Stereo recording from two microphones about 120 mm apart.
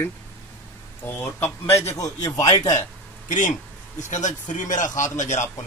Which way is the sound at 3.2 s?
90° left.